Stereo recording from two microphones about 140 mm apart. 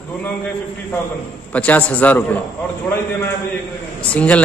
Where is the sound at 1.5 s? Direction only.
10° left (ahead or behind).